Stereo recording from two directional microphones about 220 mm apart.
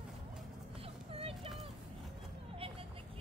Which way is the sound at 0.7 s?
25° right (ahead or behind).